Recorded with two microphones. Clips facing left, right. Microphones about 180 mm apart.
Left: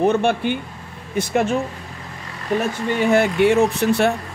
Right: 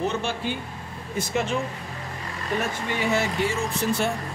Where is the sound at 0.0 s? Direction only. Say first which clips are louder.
Left 9 dB; 55° left (ahead or behind).